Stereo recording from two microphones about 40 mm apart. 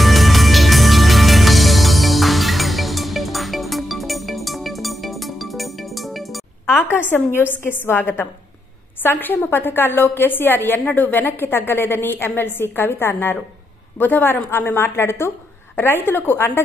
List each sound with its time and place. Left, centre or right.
0.0 s music: centre
7.6 s a woman's voice: left
10.8 s a woman's voice: left
13.9 s a woman's voice: left
14.8 s a woman's voice: left
15.7 s a woman's voice: left